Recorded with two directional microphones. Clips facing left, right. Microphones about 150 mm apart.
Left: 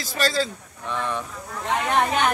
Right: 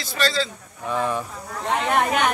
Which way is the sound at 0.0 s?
45° left (ahead or behind).